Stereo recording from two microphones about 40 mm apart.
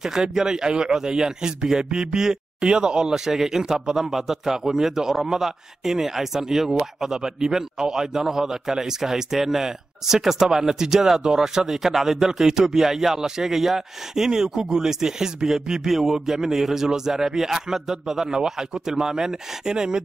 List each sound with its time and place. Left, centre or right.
0.0 s speech: centre